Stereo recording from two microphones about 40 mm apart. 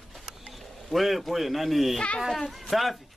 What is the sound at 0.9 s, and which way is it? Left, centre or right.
Speech, centre.